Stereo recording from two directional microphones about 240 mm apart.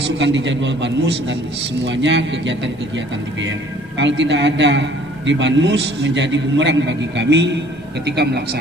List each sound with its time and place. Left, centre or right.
0.2 s a man's voice: right
4.0 s a man's voice: right